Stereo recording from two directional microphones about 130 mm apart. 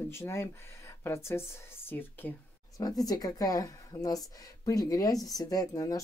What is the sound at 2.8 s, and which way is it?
Speech, 30° left (ahead or behind).